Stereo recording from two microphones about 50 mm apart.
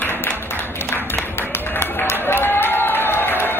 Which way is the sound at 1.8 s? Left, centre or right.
Left.